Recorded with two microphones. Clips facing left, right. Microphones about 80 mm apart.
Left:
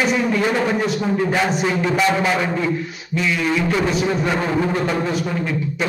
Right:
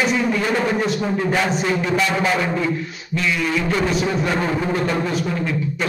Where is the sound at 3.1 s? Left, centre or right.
Centre.